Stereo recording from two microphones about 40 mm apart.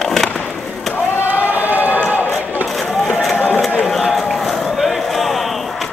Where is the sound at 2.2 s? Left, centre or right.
Left.